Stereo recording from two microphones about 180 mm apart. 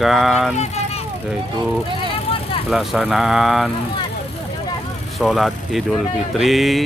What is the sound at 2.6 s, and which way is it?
Speech, centre (ahead or behind).